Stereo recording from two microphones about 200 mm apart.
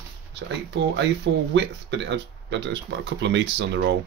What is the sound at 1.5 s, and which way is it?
Speech, 60° right (ahead or behind).